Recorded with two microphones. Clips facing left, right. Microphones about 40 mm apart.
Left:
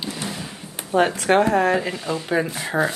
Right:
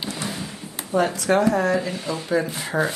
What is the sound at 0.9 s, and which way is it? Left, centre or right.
Speech, left.